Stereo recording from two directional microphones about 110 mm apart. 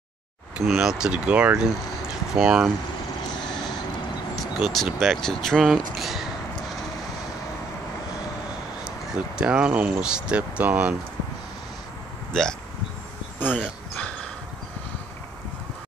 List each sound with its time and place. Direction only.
0.6 s speech: 5° right (ahead or behind)
4.4 s speech: centre (ahead or behind)
9.1 s speech: 10° right (ahead or behind)
12.3 s speech: 5° left (ahead or behind)
13.4 s speech: 15° left (ahead or behind)